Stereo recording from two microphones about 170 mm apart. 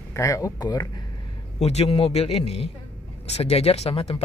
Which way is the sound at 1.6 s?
40° left (ahead or behind).